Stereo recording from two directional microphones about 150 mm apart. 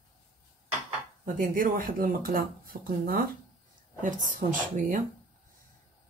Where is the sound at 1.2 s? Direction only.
65° right (ahead or behind).